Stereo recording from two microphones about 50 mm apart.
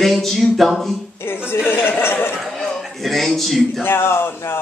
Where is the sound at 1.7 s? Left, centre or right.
Left.